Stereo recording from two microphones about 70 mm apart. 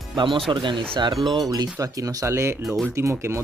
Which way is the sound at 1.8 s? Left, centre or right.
Right.